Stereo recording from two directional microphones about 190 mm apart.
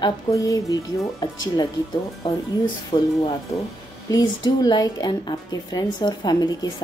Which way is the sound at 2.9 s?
25° left (ahead or behind).